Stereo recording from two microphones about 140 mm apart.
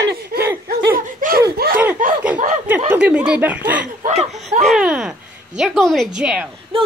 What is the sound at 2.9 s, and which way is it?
A woman's voice, 10° right (ahead or behind).